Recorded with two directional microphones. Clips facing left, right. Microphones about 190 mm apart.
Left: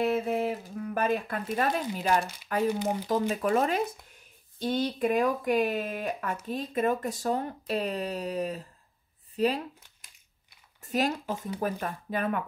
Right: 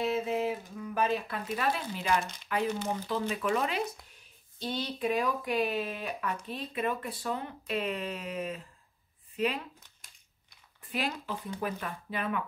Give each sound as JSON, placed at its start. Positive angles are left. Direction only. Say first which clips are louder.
{"t": 0.0, "sound": "speech", "louder": "left 3 dB", "side_deg": 55}
{"t": 2.7, "sound": "speech", "louder": "left 4 dB", "side_deg": 15}
{"t": 3.1, "sound": "speech", "louder": "left 4 dB", "side_deg": 40}
{"t": 10.8, "sound": "speech", "louder": "left 6 dB", "side_deg": 45}